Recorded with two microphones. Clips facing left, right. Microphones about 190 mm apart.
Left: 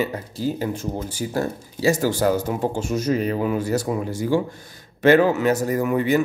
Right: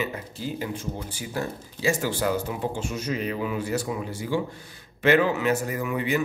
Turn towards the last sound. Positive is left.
turn(degrees=40)  # may be behind; listen again after turning